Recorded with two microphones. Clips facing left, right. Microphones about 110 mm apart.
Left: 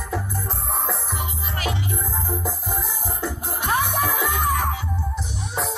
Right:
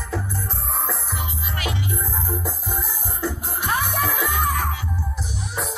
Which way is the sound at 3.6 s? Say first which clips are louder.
Left 1 dB; 15° left (ahead or behind).